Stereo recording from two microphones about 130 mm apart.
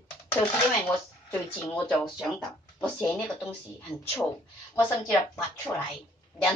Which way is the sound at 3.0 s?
15° left (ahead or behind).